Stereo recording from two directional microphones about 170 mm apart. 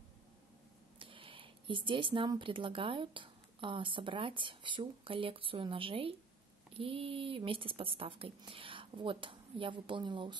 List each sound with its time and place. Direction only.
0.9 s speech: 30° right (ahead or behind)